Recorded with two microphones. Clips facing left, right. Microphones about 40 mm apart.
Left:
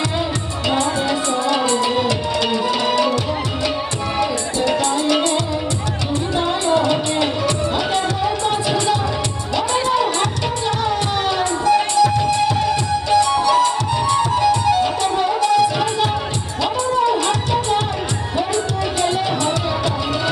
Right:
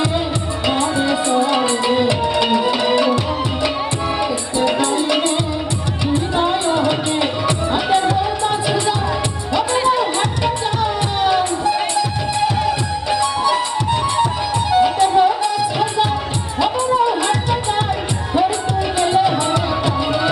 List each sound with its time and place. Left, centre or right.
1.3 s music: right
4.2 s music: centre
6.3 s music: centre
10.8 s music: centre
14.7 s music: centre
17.3 s music: centre